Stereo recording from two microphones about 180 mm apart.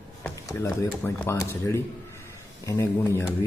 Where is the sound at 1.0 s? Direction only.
15° left (ahead or behind).